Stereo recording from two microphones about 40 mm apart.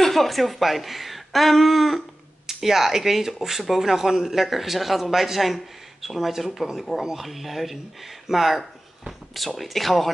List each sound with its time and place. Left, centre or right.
0.0 s a woman's voice: centre
7.2 s a woman's voice: centre